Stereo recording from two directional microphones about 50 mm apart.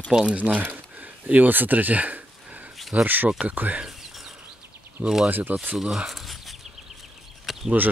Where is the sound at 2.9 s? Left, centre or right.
Right.